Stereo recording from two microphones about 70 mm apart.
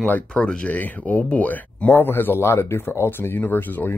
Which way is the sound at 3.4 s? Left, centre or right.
Left.